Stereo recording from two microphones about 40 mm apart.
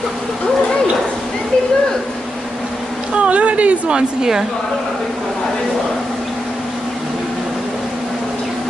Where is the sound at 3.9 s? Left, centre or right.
Centre.